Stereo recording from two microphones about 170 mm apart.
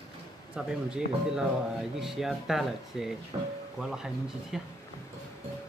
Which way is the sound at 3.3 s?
30° right (ahead or behind).